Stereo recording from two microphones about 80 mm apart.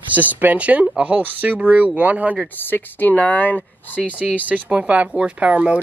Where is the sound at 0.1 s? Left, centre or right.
Right.